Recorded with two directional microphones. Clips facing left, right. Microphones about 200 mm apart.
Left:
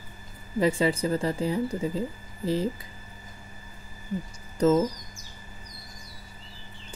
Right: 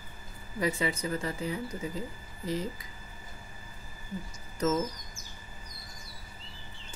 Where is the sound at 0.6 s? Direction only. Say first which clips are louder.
Left 6 dB; 30° left (ahead or behind).